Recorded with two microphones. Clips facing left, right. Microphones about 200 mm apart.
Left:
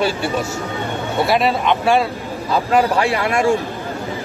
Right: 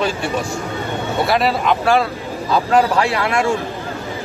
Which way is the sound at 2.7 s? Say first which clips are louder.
Even; 15° left (ahead or behind).